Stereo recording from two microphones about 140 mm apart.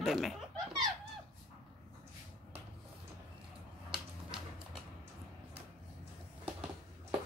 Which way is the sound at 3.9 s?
5° right (ahead or behind).